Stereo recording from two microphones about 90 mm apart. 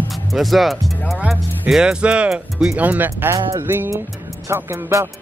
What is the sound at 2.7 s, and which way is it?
Speech, 20° right (ahead or behind).